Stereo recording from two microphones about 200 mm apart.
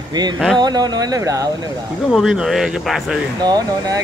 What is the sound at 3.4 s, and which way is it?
Speech, 20° right (ahead or behind).